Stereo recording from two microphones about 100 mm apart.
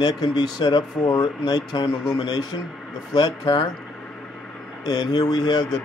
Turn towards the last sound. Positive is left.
turn(degrees=45)  # may be behind; listen again after turning